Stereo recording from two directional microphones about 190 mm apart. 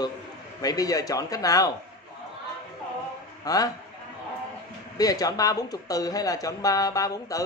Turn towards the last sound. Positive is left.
turn(degrees=15)  # may be behind; listen again after turning